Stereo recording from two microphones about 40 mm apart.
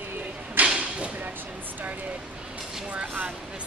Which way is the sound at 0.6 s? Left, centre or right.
Right.